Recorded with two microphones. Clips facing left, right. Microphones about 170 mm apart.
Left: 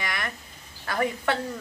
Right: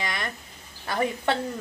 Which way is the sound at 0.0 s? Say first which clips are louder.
Right 1 dB; 25° right (ahead or behind).